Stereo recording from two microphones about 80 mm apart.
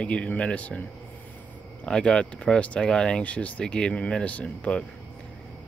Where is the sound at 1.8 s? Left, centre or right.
Centre.